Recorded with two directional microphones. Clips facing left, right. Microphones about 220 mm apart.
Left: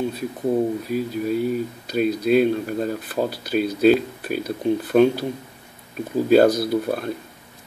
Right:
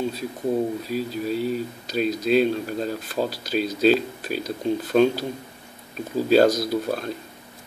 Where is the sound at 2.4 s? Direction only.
10° left (ahead or behind).